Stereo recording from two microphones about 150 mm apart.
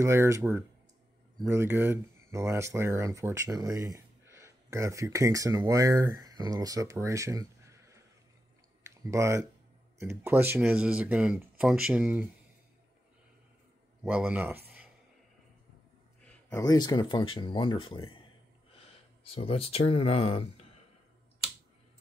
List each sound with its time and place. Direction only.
0.0 s speech: 15° right (ahead or behind)
9.0 s speech: 20° right (ahead or behind)
14.0 s speech: 10° right (ahead or behind)
16.5 s speech: 25° left (ahead or behind)
19.2 s speech: 40° left (ahead or behind)